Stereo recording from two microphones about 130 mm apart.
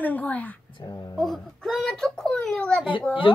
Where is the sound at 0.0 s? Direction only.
10° left (ahead or behind).